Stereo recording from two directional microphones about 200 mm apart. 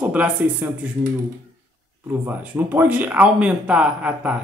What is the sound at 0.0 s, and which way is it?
Speech, 5° right (ahead or behind).